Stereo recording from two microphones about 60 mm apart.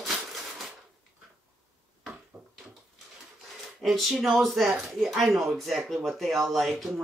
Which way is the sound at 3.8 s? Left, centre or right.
Centre.